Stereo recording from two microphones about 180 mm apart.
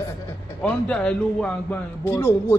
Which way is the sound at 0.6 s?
5° left (ahead or behind).